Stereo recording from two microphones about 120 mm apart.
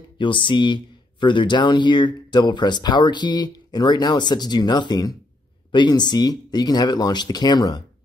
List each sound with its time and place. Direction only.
0.2 s speech: 45° left (ahead or behind)